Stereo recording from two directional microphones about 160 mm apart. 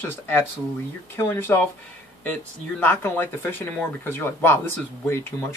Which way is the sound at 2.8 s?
10° left (ahead or behind).